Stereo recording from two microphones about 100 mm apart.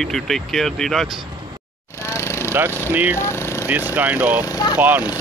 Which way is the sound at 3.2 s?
30° left (ahead or behind).